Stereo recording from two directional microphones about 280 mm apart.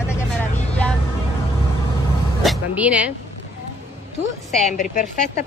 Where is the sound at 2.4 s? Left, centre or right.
Centre.